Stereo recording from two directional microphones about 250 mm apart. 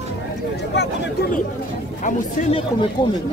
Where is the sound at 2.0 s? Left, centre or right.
Left.